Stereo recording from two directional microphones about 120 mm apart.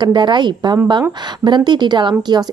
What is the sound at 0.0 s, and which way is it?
A woman's voice, 40° right (ahead or behind).